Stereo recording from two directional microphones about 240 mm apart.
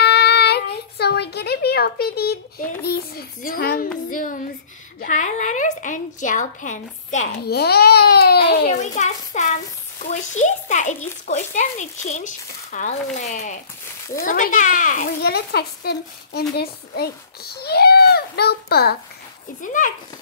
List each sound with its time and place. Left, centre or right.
0.0 s child singing: left
1.3 s a child's voice: left
8.6 s speech: left